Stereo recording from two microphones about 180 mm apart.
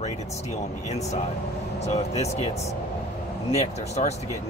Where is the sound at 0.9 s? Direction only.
40° left (ahead or behind).